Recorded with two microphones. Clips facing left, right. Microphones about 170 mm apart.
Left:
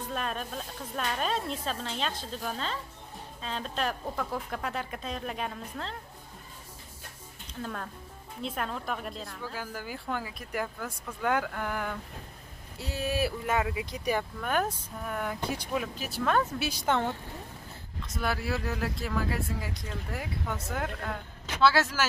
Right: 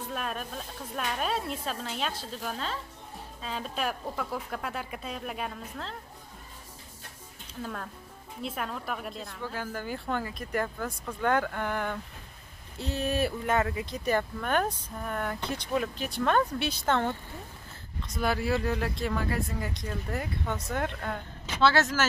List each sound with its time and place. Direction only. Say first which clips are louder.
0.0 s speech: left 1 dB; 5° right (ahead or behind)
7.6 s speech: even; centre (ahead or behind)